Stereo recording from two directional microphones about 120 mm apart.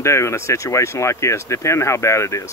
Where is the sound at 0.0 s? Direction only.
25° left (ahead or behind).